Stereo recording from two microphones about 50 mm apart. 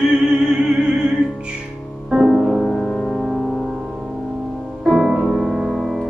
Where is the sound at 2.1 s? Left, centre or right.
Centre.